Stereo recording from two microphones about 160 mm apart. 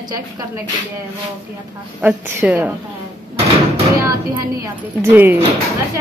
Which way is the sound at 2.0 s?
10° right (ahead or behind).